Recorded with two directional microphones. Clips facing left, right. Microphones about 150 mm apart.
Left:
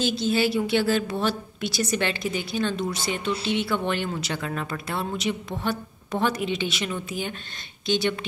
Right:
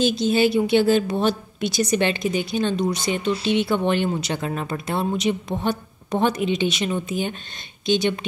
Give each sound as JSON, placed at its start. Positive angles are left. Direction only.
{"t": 0.0, "sound": "a woman's voice", "side_deg": -20}